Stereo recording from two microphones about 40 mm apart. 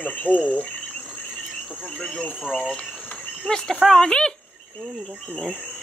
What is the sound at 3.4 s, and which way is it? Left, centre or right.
Speech, centre.